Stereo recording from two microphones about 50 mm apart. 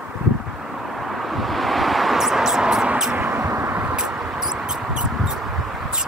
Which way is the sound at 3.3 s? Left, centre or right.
Right.